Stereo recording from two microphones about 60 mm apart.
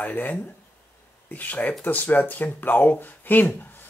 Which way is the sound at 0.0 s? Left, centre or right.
Left.